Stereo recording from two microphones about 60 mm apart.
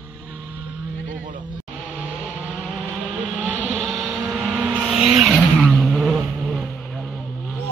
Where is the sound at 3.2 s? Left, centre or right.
Centre.